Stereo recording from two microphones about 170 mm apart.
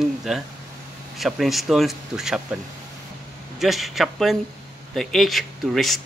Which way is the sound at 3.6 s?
Centre (ahead or behind).